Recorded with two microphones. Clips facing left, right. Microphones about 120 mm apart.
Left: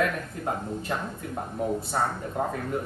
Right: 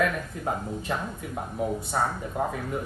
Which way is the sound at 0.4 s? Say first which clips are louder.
Left 1 dB; 5° right (ahead or behind).